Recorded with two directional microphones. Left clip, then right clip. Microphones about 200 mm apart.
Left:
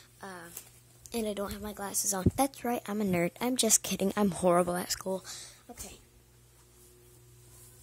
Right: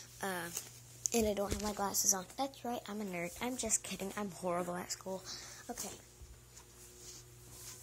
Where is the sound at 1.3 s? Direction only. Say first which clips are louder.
Even; 15° left (ahead or behind).